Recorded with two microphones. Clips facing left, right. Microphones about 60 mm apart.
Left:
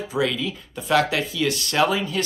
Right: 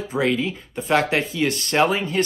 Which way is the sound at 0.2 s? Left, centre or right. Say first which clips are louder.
Right 2 dB; right.